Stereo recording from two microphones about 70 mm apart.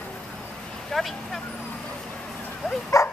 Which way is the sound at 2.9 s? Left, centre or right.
Left.